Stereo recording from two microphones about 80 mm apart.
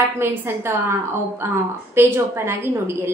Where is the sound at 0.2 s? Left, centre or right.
Right.